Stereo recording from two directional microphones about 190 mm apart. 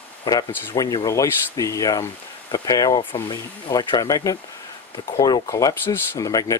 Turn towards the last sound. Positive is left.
turn(degrees=15)  # may be behind; listen again after turning